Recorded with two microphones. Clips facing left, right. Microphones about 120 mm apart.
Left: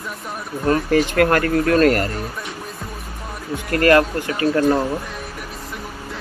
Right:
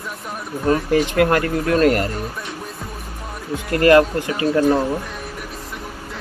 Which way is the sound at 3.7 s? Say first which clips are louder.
Right 2 dB; 20° right (ahead or behind).